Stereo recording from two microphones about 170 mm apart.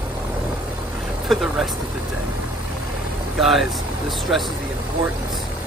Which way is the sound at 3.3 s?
Centre (ahead or behind).